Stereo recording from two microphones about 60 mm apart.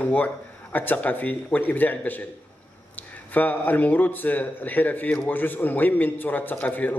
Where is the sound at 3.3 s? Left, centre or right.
Left.